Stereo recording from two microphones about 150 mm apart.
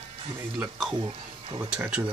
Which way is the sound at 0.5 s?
Centre (ahead or behind).